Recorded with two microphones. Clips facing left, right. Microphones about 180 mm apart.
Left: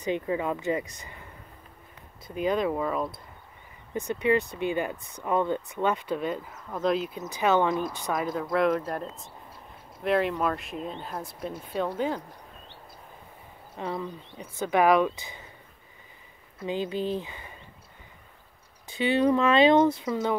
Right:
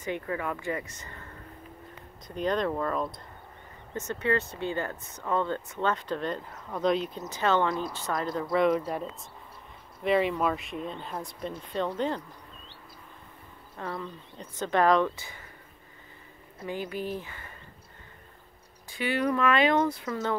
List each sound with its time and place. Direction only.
0.0 s speech: 20° left (ahead or behind)
2.2 s speech: 5° left (ahead or behind)
13.7 s speech: 15° left (ahead or behind)
16.6 s speech: 25° left (ahead or behind)
18.9 s speech: 25° left (ahead or behind)